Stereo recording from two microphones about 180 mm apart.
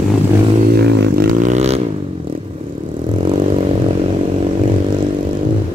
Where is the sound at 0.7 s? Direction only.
65° right (ahead or behind).